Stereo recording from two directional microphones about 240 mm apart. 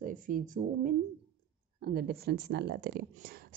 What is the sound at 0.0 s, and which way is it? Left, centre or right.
Speech, right.